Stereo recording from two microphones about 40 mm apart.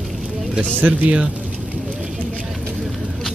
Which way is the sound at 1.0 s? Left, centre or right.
Right.